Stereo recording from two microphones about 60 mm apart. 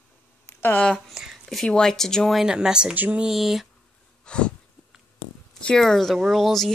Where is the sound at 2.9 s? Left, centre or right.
Right.